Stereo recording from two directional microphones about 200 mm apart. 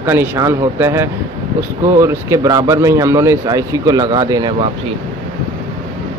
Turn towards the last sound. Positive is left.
turn(degrees=-20)  # may be behind; listen again after turning